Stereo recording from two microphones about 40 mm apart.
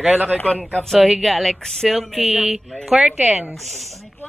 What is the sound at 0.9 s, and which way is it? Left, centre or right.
Speech, centre.